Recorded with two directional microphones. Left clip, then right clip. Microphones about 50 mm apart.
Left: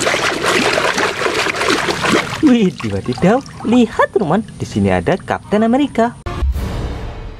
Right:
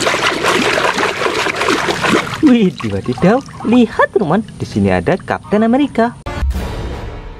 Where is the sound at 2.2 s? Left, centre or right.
Centre.